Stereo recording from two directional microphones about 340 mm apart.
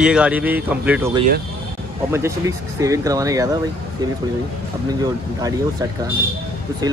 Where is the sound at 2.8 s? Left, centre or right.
Centre.